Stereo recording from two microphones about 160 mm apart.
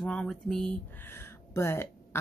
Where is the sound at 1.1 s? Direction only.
15° left (ahead or behind).